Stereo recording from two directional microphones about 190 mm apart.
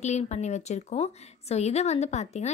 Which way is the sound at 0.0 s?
35° left (ahead or behind).